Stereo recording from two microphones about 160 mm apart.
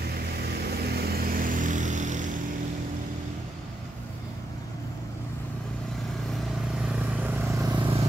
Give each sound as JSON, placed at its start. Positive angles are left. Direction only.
{"t": 0.6, "sound": "vehicle", "side_deg": -80}
{"t": 6.9, "sound": "vehicle", "side_deg": -10}